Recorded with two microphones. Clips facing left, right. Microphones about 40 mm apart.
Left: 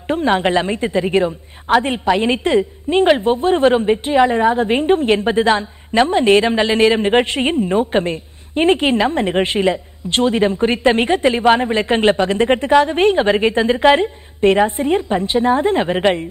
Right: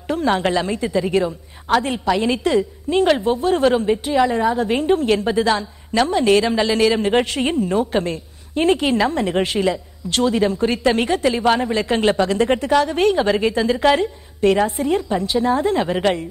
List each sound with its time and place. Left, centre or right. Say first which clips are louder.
0.1 s a woman's voice: left 3 dB; left